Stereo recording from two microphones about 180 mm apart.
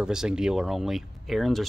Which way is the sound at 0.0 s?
5° right (ahead or behind).